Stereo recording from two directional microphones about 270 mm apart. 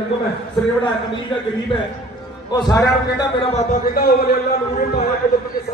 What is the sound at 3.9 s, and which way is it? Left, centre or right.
A man's voice, left.